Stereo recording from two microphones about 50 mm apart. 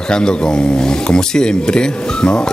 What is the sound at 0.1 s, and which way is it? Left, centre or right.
Speech, centre.